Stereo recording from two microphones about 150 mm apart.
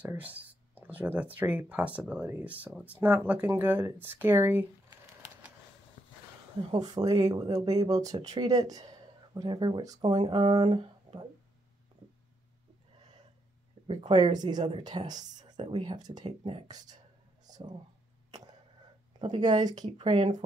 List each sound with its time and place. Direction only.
0.0 s speech: 10° right (ahead or behind)
6.8 s speech: 25° right (ahead or behind)
13.8 s speech: 35° right (ahead or behind)
16.3 s speech: 40° right (ahead or behind)
16.6 s speech: 25° right (ahead or behind)
17.5 s a sound: 25° right (ahead or behind)
19.1 s speech: 30° right (ahead or behind)